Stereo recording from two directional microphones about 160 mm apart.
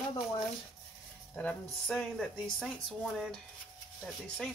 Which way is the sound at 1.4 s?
5° left (ahead or behind).